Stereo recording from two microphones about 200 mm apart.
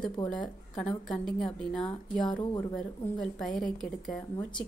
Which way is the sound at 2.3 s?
20° left (ahead or behind).